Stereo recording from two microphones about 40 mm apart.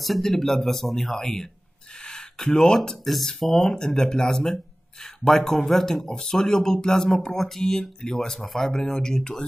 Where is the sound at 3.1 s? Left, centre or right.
Centre.